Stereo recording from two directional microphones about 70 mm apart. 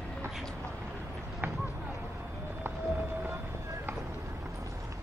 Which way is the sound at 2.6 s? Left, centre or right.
Right.